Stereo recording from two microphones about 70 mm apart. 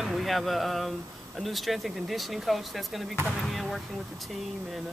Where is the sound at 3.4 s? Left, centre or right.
Centre.